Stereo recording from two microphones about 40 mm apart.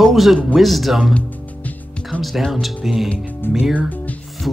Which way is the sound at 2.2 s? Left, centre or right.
Centre.